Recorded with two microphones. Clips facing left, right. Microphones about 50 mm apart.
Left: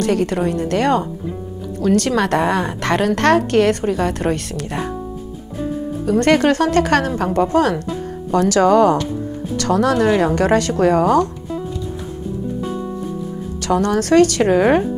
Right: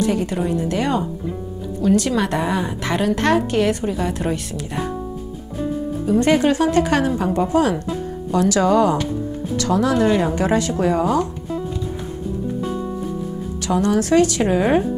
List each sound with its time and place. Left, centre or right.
0.0 s a woman's voice: left
6.0 s a woman's voice: left
13.6 s a woman's voice: left